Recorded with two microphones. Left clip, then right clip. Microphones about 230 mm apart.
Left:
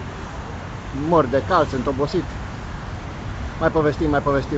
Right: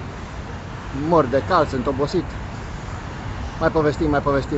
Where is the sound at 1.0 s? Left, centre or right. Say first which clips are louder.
Even; centre.